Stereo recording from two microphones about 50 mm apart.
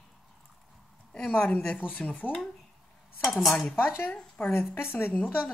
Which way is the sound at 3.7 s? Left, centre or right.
Left.